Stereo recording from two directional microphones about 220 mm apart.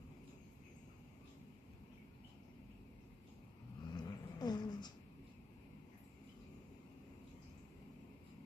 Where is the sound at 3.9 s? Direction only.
20° left (ahead or behind).